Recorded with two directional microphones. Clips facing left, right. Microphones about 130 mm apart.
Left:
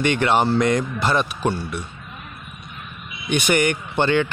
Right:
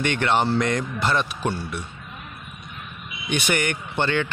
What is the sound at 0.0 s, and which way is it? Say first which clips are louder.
A man's voice: left 3 dB; 10° left (ahead or behind).